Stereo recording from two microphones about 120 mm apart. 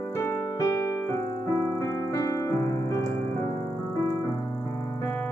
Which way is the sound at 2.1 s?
25° left (ahead or behind).